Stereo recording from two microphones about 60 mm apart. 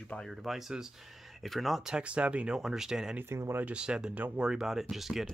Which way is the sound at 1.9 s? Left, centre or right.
Centre.